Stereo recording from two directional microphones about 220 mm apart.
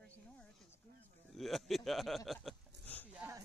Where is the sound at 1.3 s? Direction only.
Centre (ahead or behind).